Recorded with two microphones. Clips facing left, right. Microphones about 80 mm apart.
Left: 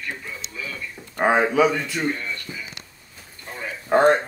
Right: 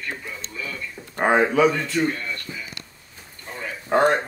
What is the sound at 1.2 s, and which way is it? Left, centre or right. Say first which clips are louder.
Speech: even; centre.